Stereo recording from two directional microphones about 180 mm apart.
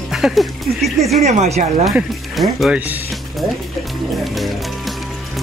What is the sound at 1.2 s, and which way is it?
Speech, 40° right (ahead or behind).